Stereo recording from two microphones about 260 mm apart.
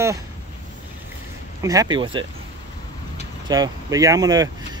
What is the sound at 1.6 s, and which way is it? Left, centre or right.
Speech, centre.